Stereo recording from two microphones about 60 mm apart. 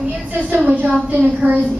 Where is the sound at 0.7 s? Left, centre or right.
Right.